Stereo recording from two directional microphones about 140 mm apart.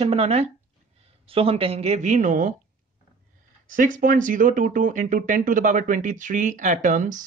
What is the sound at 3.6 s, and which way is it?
Speech, 70° right (ahead or behind).